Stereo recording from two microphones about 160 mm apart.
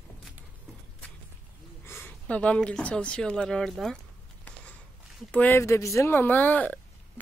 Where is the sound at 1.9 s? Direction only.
15° left (ahead or behind).